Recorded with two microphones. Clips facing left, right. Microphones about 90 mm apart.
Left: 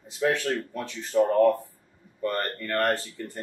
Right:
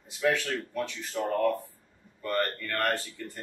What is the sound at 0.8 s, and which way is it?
Speech, 40° left (ahead or behind).